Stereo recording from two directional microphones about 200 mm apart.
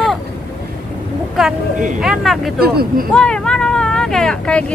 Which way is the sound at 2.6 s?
50° right (ahead or behind).